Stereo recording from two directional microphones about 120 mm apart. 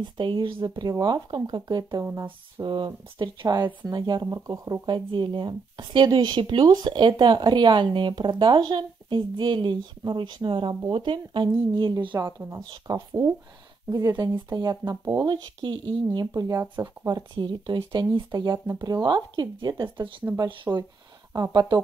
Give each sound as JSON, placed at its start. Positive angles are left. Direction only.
{"t": 0.0, "sound": "speech", "side_deg": -40}
{"t": 12.2, "sound": "speech", "side_deg": -25}
{"t": 12.5, "sound": "speech", "side_deg": -35}
{"t": 20.7, "sound": "speech", "side_deg": -20}
{"t": 21.5, "sound": "speech", "side_deg": -40}